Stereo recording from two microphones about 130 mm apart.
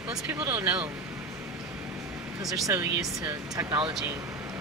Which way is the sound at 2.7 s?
25° right (ahead or behind).